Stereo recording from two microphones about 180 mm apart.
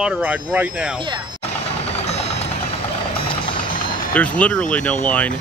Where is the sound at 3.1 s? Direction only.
30° left (ahead or behind).